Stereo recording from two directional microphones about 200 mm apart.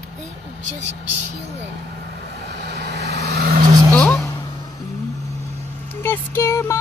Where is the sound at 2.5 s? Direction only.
60° right (ahead or behind).